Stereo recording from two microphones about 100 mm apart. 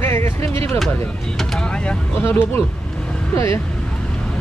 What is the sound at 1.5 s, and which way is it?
Speech, 10° left (ahead or behind).